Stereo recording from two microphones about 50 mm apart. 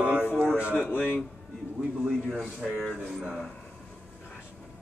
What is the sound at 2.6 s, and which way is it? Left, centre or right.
Speech, centre.